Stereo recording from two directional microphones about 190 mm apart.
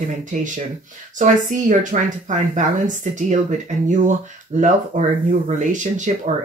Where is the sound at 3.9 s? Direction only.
40° right (ahead or behind).